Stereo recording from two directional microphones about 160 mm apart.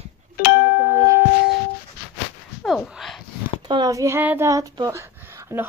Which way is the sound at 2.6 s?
Centre (ahead or behind).